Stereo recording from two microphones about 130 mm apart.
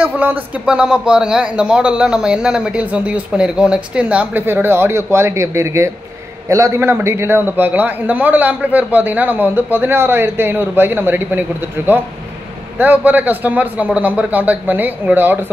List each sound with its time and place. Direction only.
0.0 s a man's voice: 10° right (ahead or behind)